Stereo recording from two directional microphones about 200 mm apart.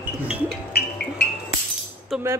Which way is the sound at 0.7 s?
50° left (ahead or behind).